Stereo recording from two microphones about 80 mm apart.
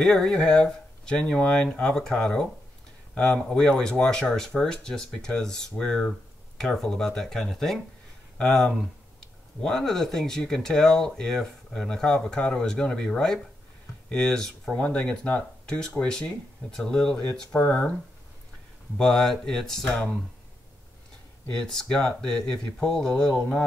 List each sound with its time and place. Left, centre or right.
0.0 s speech: centre
18.9 s speech: centre
21.5 s speech: centre